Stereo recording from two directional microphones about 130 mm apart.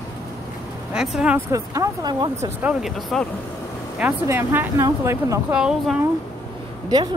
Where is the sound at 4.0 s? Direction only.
15° right (ahead or behind).